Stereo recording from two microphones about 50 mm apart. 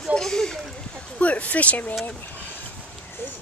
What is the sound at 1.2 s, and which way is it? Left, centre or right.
Speech, left.